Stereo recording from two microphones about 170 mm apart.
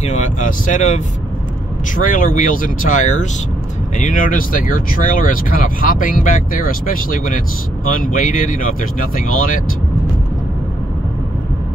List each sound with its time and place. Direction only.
0.0 s speech: 45° left (ahead or behind)